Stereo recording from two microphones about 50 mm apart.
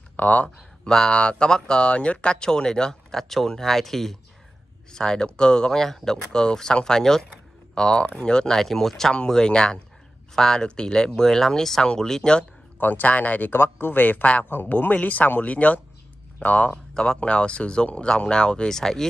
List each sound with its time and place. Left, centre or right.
0.1 s speech: left
0.8 s speech: centre
12.8 s speech: left
14.5 s speech: left
16.9 s speech: centre